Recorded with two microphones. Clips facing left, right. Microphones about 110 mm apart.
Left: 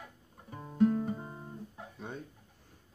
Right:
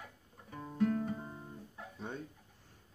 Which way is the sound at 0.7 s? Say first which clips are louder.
Left 5 dB; 20° left (ahead or behind).